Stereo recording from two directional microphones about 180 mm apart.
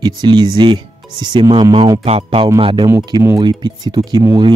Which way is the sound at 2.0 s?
35° right (ahead or behind).